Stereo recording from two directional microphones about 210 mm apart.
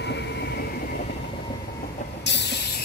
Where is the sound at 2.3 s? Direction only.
55° left (ahead or behind).